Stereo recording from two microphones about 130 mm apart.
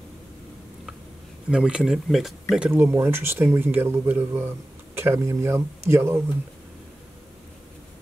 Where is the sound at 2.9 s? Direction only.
20° right (ahead or behind).